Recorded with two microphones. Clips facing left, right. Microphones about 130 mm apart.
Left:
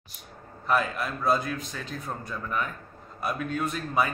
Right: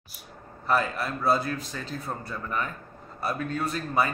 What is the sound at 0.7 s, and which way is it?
A man's voice, centre (ahead or behind).